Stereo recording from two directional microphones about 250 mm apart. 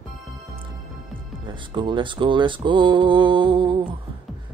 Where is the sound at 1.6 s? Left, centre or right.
Centre.